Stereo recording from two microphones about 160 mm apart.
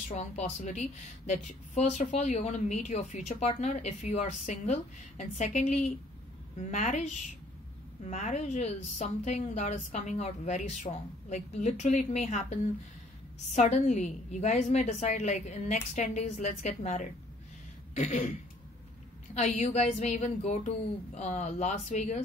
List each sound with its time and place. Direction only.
0.1 s a woman's voice: 45° left (ahead or behind)
19.3 s a woman's voice: 45° left (ahead or behind)